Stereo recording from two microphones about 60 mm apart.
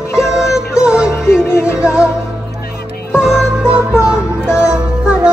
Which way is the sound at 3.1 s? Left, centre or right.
Centre.